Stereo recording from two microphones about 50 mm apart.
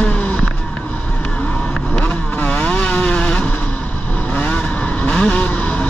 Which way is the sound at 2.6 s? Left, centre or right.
Left.